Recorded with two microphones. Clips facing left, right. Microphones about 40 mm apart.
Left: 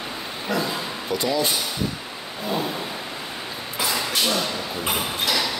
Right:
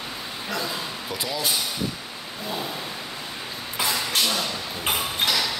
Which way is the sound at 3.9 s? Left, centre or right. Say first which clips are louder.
Left 2 dB; centre.